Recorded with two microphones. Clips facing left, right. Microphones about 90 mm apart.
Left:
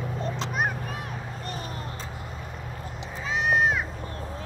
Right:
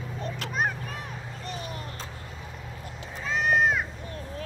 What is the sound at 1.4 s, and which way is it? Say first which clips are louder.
Vehicle: right 1 dB; 45° left (ahead or behind).